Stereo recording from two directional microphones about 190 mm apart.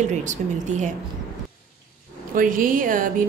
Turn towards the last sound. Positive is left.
turn(degrees=-45)  # may be behind; listen again after turning